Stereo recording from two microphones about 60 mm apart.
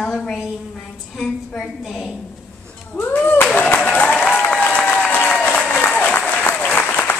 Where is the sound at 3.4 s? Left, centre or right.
Left.